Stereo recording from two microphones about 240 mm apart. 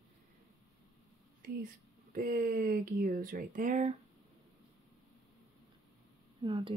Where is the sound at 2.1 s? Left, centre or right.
Right.